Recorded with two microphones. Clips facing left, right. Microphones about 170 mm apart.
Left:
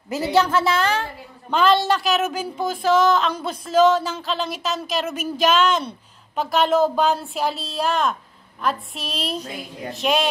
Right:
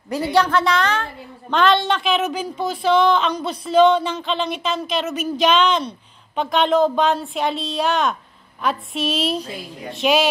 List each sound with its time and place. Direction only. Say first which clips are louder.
0.3 s a woman's voice: right 1 dB; 5° left (ahead or behind)